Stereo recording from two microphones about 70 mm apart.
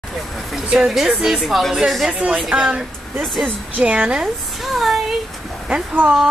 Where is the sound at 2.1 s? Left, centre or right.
Centre.